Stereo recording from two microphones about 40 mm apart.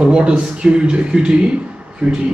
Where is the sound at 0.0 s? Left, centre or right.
Right.